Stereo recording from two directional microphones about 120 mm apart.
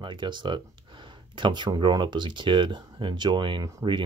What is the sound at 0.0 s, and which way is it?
Speech, 40° right (ahead or behind).